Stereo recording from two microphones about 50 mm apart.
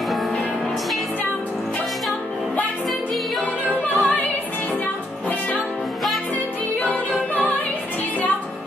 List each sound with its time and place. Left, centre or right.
4.0 s music: left
6.8 s music: left